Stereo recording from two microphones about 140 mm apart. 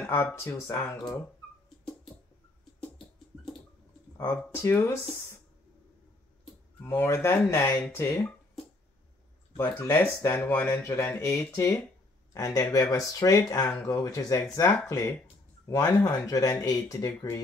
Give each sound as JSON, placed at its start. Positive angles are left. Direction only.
{"t": 0.0, "sound": "speech", "side_deg": 15}
{"t": 4.2, "sound": "speech", "side_deg": 10}
{"t": 6.8, "sound": "speech", "side_deg": 15}
{"t": 9.6, "sound": "speech", "side_deg": 15}
{"t": 15.7, "sound": "speech", "side_deg": 30}